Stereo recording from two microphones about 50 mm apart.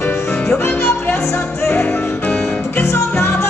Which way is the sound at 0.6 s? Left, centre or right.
Left.